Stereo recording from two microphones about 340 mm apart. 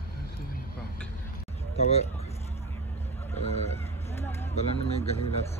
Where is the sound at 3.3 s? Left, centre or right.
Centre.